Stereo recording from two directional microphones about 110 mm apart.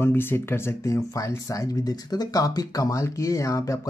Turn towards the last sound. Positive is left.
turn(degrees=30)  # may be behind; listen again after turning